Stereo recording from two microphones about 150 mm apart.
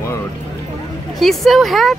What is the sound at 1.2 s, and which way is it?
Speech, centre (ahead or behind).